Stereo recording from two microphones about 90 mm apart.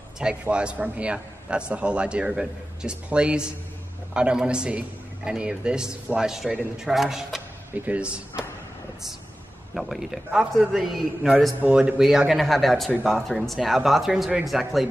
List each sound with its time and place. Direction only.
0.2 s a man's voice: 10° right (ahead or behind)
7.7 s a man's voice: 20° right (ahead or behind)
9.8 s speech: 5° right (ahead or behind)